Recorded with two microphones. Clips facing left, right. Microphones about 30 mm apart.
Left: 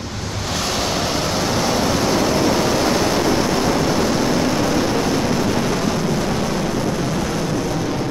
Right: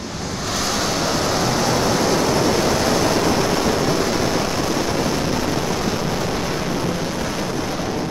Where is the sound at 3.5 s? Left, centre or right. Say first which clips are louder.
Left 1 dB; centre.